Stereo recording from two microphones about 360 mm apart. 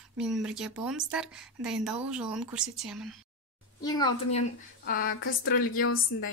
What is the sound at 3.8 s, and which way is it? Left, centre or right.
Speech, centre.